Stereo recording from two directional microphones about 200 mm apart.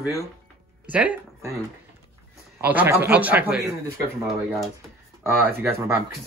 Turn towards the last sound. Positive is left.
turn(degrees=-10)  # may be behind; listen again after turning